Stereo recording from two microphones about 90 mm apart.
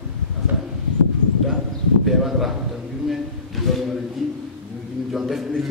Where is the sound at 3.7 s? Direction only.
Centre (ahead or behind).